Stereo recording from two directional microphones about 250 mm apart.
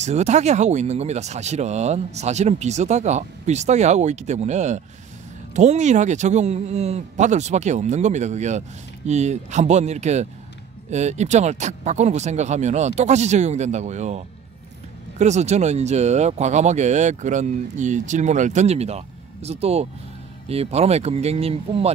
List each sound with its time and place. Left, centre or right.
0.0 s speech: right